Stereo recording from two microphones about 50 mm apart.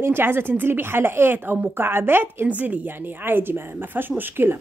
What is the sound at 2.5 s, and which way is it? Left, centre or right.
Speech, right.